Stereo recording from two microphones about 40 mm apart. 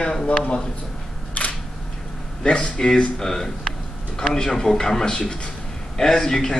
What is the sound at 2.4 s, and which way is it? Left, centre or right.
Speech, left.